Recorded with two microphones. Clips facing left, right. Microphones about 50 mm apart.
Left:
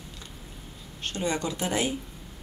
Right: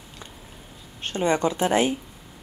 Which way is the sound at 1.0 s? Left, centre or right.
Right.